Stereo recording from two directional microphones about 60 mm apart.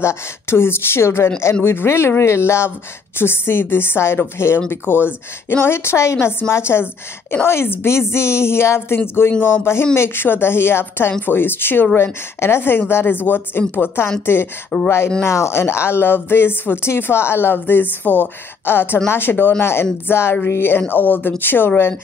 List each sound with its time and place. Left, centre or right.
0.0 s speech: left
14.7 s speech: centre
15.2 s speech: left